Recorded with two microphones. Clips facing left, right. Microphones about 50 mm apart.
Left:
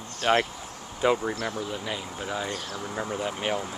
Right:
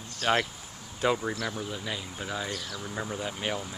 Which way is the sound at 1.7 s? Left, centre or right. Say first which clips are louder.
Left 3 dB; centre.